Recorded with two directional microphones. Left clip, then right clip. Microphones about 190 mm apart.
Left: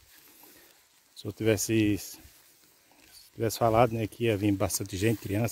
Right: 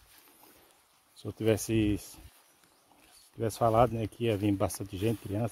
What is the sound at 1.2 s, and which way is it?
Speech, 5° left (ahead or behind).